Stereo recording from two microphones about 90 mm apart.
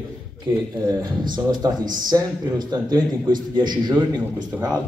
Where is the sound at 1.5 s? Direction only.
50° right (ahead or behind).